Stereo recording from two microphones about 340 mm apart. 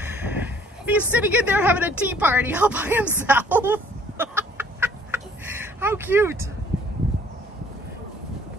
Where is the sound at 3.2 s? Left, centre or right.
Centre.